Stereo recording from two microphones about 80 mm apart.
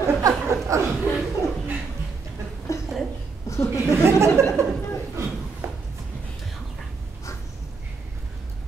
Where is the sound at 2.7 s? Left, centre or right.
Left.